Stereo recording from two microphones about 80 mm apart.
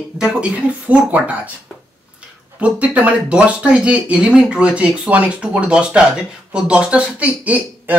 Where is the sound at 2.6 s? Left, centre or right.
Centre.